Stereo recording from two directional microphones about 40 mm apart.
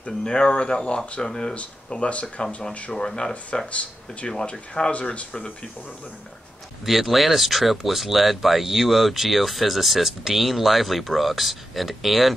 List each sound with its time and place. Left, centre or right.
0.2 s speech: centre
1.9 s speech: left
2.9 s speech: centre
4.5 s speech: left
6.9 s speech: centre